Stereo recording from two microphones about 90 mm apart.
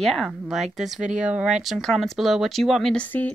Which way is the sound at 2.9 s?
15° left (ahead or behind).